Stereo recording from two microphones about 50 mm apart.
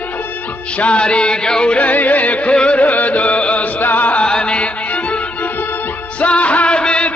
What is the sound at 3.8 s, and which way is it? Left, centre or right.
Chant, left.